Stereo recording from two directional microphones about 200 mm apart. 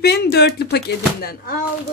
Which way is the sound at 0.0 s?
55° left (ahead or behind).